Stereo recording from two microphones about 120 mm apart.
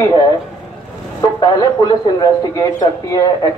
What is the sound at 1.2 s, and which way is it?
A man's voice, 35° left (ahead or behind).